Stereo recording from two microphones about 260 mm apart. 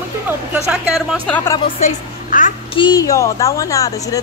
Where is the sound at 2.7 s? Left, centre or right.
Centre.